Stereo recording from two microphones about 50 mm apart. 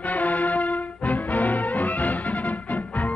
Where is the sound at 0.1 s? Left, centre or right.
Left.